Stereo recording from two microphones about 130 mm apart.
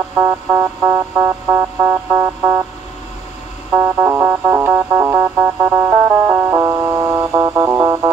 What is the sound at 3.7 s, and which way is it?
Music, 25° right (ahead or behind).